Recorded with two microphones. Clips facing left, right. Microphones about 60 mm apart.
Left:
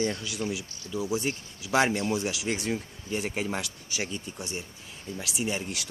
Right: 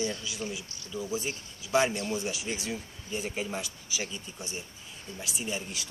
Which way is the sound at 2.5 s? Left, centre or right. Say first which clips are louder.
Left 5 dB; left.